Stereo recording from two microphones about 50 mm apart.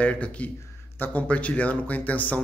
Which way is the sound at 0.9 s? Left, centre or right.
Left.